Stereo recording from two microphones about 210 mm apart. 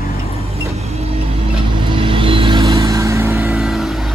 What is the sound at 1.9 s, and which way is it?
Music, 25° right (ahead or behind).